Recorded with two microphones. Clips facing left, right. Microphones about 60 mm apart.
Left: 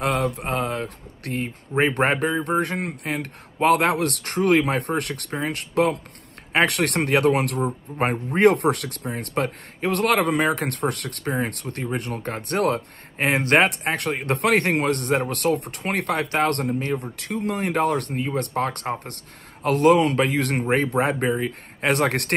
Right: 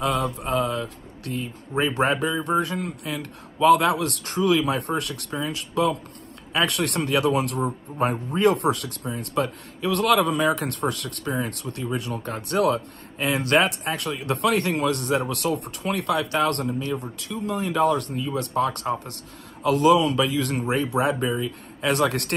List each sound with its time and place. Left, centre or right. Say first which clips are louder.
0.0 s a man's voice: left 1 dB; left
17.2 s a man's voice: left 2 dB; left